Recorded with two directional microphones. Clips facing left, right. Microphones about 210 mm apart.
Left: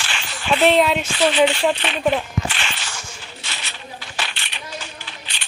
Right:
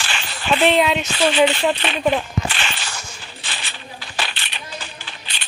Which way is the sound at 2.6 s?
35° right (ahead or behind).